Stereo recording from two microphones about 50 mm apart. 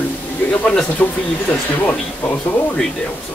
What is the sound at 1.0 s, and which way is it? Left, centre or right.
Speech, left.